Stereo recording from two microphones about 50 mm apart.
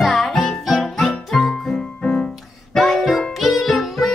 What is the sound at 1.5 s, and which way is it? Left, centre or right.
Music, centre.